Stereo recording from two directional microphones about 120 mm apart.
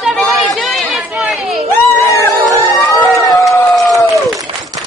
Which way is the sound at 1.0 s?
5° right (ahead or behind).